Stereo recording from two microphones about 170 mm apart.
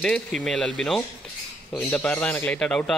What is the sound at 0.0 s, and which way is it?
A man's voice, 5° left (ahead or behind).